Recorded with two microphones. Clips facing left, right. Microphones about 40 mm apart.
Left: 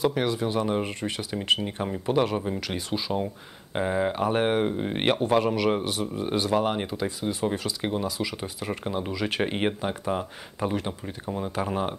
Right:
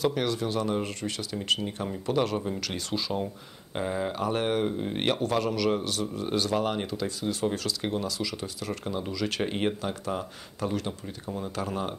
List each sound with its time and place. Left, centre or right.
0.0 s speech: centre